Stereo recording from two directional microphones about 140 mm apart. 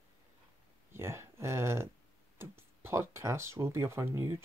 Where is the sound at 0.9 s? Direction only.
20° right (ahead or behind).